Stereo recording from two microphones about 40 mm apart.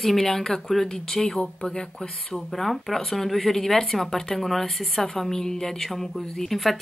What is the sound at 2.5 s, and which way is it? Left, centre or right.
Speech, centre.